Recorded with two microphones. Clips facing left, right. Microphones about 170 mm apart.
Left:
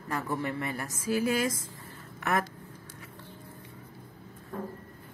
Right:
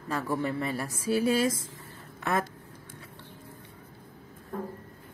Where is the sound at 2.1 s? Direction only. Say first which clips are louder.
Even; 25° right (ahead or behind).